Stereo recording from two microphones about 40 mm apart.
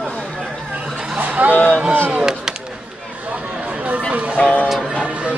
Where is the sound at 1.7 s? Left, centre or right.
Right.